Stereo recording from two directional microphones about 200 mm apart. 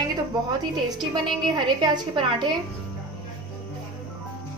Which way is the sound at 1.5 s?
25° right (ahead or behind).